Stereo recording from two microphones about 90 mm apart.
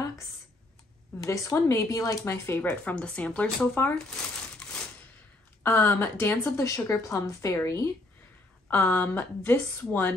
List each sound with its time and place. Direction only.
1.2 s speech: 35° left (ahead or behind)
2.8 s speech: 15° left (ahead or behind)
5.6 s speech: 25° left (ahead or behind)